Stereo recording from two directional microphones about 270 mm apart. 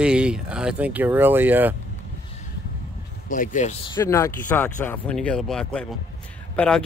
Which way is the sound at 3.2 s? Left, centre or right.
Left.